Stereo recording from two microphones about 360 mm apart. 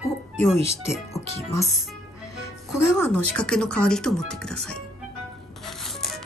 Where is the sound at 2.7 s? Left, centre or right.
Centre.